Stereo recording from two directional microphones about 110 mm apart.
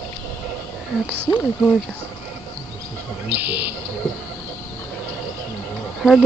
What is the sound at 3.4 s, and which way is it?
Speech, 15° right (ahead or behind).